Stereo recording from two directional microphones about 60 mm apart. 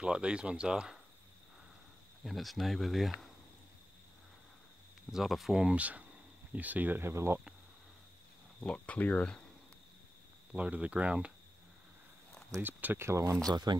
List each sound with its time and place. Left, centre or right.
0.0 s speech: centre
2.2 s speech: centre
5.1 s speech: centre
5.6 s speech: right
7.0 s speech: right
8.6 s speech: left
10.5 s speech: right
12.6 s speech: right
13.0 s speech: right